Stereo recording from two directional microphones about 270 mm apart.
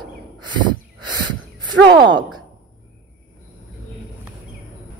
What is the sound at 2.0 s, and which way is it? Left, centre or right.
Speech, centre.